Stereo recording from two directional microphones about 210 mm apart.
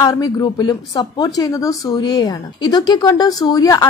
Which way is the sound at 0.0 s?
20° left (ahead or behind).